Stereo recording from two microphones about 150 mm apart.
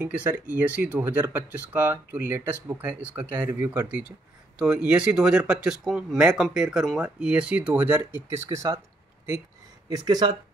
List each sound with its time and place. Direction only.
0.0 s speech: 10° right (ahead or behind)
9.8 s speech: 25° right (ahead or behind)